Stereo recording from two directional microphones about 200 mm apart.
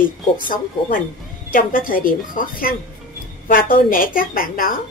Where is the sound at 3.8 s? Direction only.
45° left (ahead or behind).